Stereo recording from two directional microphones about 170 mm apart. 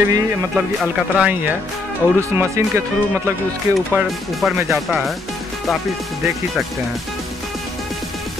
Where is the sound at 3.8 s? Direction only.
Centre (ahead or behind).